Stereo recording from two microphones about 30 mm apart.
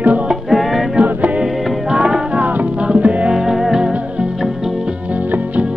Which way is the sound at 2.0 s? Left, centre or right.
Right.